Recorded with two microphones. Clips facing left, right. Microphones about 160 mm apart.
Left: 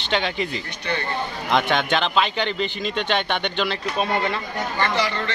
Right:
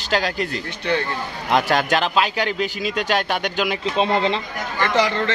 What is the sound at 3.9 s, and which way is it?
Speech, 25° right (ahead or behind).